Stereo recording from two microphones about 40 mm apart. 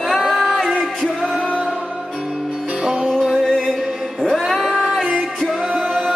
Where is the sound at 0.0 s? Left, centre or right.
Centre.